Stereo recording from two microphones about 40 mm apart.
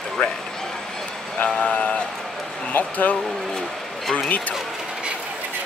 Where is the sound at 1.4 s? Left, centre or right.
Left.